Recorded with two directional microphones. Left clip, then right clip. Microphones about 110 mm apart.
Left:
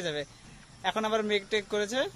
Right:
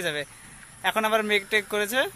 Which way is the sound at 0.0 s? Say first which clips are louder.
Right 5 dB; 20° right (ahead or behind).